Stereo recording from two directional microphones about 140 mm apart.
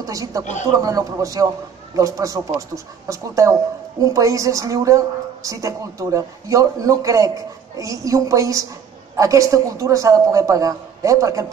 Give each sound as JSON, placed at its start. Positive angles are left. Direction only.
{"t": 0.0, "sound": "a woman's voice", "side_deg": -25}